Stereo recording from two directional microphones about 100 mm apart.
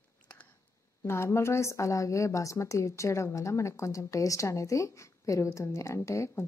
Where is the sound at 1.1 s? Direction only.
25° left (ahead or behind).